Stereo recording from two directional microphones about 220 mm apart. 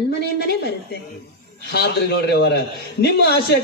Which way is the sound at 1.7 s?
45° left (ahead or behind).